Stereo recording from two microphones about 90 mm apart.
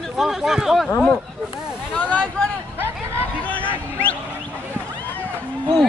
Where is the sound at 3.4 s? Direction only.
20° left (ahead or behind).